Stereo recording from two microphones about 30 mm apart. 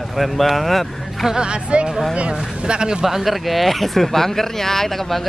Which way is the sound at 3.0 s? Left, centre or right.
Centre.